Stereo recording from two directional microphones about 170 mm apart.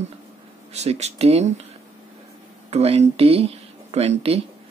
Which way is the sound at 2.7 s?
40° right (ahead or behind).